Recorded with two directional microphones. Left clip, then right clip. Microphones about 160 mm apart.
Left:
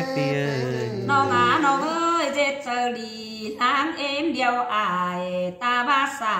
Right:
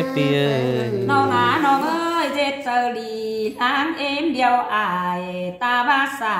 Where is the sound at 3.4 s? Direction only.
Centre (ahead or behind).